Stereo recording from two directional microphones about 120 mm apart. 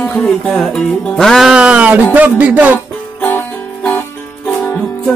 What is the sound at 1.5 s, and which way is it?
Music, 10° right (ahead or behind).